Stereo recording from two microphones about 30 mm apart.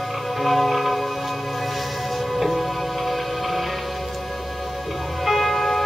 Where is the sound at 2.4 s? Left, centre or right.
Centre.